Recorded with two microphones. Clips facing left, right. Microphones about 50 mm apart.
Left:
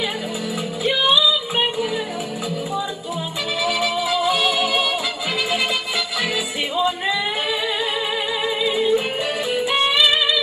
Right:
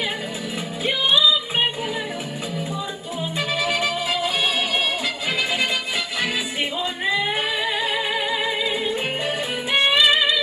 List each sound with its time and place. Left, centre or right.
3.5 s music: right
8.7 s music: right